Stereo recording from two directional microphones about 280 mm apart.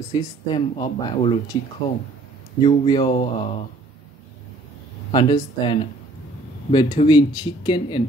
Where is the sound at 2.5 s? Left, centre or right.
Centre.